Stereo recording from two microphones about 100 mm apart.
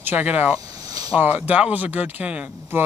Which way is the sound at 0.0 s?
15° right (ahead or behind).